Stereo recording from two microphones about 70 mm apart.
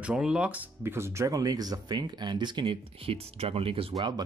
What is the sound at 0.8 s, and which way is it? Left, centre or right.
Speech, right.